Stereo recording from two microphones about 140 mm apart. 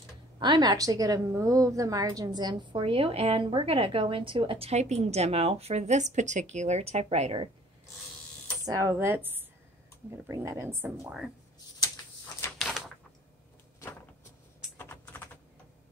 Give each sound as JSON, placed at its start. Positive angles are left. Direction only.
{"t": 0.4, "sound": "a woman's voice", "side_deg": -30}
{"t": 8.6, "sound": "a woman's voice", "side_deg": -25}
{"t": 12.5, "sound": "typewriter", "side_deg": 0}
{"t": 14.8, "sound": "typing", "side_deg": 15}